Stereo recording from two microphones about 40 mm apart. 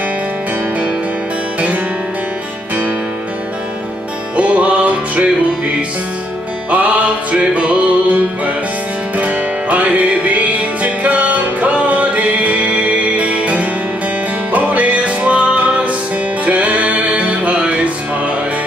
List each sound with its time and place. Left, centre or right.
4.4 s music: right
6.7 s music: right